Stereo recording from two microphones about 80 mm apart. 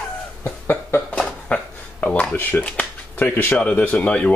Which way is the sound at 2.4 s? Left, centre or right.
Left.